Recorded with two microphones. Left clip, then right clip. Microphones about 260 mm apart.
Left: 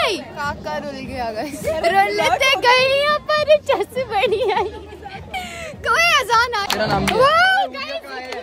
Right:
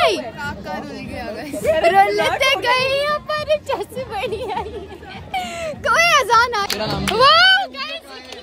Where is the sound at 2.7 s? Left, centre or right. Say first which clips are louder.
Left 3 dB; left.